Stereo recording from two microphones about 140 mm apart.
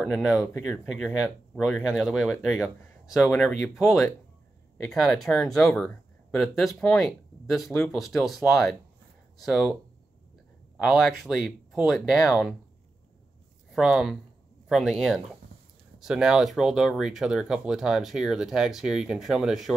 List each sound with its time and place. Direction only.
0.0 s speech: 5° right (ahead or behind)
2.4 s speech: 15° left (ahead or behind)
3.6 s speech: centre (ahead or behind)
5.0 s speech: centre (ahead or behind)
10.8 s speech: centre (ahead or behind)
13.7 s speech: 5° right (ahead or behind)